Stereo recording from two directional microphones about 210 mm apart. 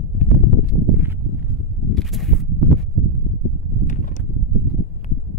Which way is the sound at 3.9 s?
35° left (ahead or behind).